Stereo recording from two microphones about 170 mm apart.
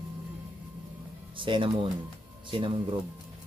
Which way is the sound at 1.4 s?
30° right (ahead or behind).